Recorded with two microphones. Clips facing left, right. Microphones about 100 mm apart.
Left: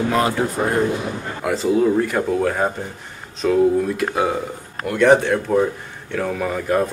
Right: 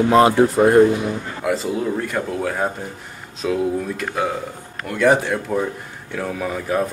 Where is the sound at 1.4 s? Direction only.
Centre (ahead or behind).